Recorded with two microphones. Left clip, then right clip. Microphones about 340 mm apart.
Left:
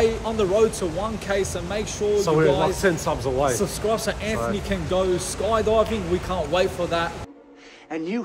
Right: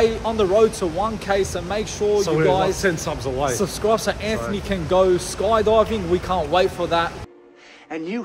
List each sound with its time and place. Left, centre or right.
0.0 s speech: centre
2.2 s speech: centre
3.5 s speech: centre